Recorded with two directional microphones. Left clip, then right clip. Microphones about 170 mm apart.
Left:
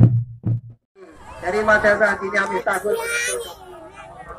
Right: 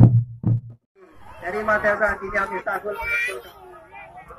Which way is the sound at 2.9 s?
60° left (ahead or behind).